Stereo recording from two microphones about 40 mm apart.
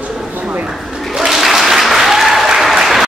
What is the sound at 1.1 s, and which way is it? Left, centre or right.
Applause, centre.